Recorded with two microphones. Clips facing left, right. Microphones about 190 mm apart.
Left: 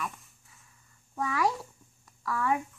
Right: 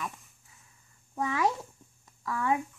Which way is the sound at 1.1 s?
20° right (ahead or behind).